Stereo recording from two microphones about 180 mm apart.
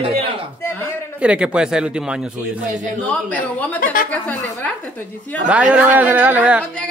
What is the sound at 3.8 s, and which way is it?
Speech, 50° left (ahead or behind).